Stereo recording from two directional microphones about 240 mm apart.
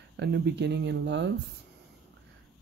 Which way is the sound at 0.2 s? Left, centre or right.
Right.